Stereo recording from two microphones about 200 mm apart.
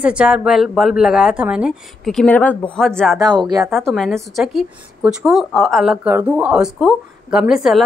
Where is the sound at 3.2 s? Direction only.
20° right (ahead or behind).